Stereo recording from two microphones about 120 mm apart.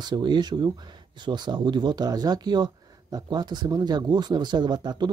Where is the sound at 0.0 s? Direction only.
40° right (ahead or behind).